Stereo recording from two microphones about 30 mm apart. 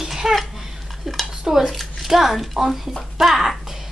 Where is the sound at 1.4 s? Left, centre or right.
Centre.